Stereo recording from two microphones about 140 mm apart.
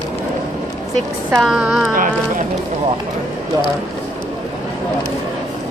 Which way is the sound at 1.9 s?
70° right (ahead or behind).